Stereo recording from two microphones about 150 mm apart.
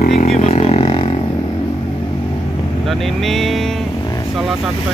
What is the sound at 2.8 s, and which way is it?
Speech, centre (ahead or behind).